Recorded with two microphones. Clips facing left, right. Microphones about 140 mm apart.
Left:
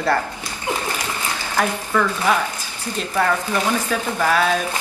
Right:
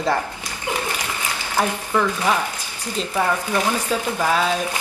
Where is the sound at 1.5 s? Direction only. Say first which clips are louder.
Even; 15° right (ahead or behind).